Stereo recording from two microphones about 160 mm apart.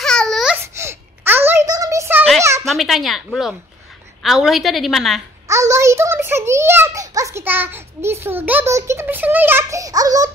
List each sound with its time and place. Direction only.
0.0 s babbling: 5° left (ahead or behind)
0.6 s a sound: 15° right (ahead or behind)
2.7 s a woman's voice: centre (ahead or behind)
5.5 s a child's voice: 20° right (ahead or behind)